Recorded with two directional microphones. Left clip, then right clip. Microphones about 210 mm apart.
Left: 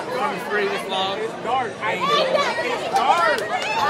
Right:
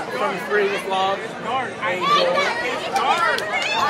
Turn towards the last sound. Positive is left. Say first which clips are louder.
# even
turn(degrees=50)  # may be behind; listen again after turning